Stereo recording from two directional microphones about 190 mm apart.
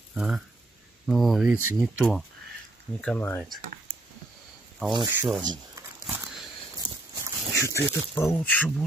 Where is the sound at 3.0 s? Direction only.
10° left (ahead or behind).